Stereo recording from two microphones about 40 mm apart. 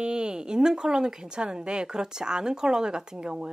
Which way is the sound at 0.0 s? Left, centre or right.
Right.